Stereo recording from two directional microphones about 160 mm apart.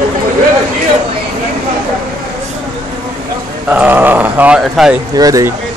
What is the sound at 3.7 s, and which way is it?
Speech, 10° right (ahead or behind).